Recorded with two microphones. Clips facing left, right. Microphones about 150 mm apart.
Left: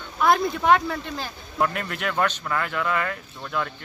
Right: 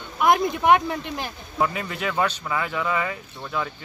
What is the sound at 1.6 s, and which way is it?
Speech, centre (ahead or behind).